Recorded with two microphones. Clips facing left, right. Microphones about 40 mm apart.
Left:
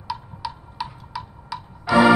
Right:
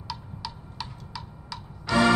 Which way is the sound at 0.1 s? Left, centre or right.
Centre.